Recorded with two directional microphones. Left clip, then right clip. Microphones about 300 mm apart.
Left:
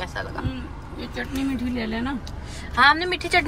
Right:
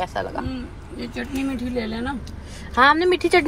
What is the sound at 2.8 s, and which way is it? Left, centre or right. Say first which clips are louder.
Speech: right 2 dB; centre.